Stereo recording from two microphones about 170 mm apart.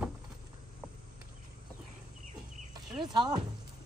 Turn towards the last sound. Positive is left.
turn(degrees=-25)  # may be behind; listen again after turning